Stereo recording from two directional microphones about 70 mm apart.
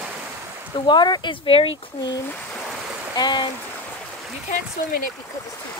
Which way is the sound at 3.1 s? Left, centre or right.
Left.